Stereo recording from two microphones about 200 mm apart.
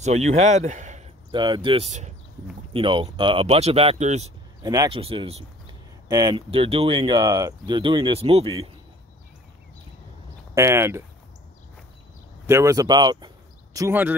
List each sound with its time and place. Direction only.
0.0 s speech: 35° right (ahead or behind)
1.3 s speech: 25° right (ahead or behind)
4.6 s speech: 20° right (ahead or behind)
10.5 s speech: 15° right (ahead or behind)
12.4 s speech: 15° right (ahead or behind)